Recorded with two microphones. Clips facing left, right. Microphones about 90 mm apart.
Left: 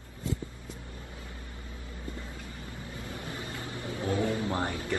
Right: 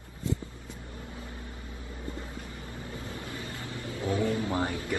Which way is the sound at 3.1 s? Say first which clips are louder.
Even; 25° left (ahead or behind).